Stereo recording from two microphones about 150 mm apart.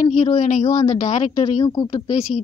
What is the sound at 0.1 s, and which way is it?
A woman's voice, 50° left (ahead or behind).